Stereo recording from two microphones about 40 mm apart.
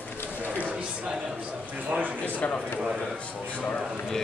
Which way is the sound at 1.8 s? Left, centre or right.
Right.